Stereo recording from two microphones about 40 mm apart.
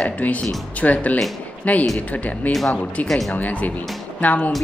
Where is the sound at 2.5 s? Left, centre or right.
Centre.